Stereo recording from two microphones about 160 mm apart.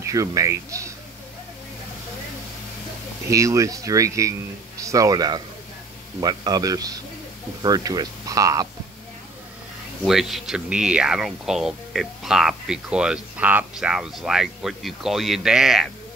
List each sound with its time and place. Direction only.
0.0 s speech: 20° right (ahead or behind)
3.3 s speech: 20° right (ahead or behind)
10.0 s speech: centre (ahead or behind)